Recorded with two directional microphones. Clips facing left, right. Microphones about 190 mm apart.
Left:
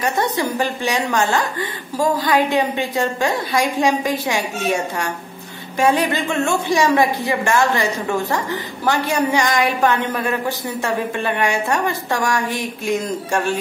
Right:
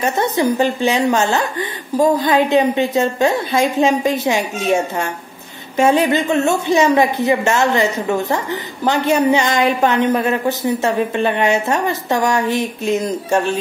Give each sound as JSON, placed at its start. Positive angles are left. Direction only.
{"t": 0.0, "sound": "a woman's voice", "side_deg": -20}